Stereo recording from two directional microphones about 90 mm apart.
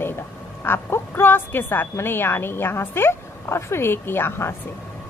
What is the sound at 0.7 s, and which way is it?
A woman's voice, 25° left (ahead or behind).